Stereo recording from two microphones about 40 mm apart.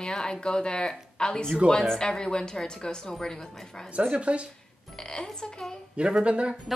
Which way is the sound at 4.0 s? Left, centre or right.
Right.